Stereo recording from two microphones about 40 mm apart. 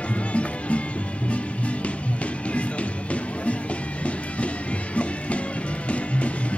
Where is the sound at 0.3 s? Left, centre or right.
Left.